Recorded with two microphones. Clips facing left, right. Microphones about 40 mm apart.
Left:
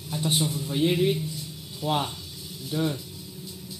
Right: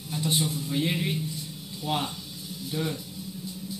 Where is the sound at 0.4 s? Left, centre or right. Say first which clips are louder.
Left 1 dB; left.